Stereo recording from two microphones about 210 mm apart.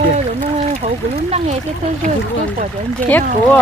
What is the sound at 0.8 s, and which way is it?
Speech, 30° right (ahead or behind).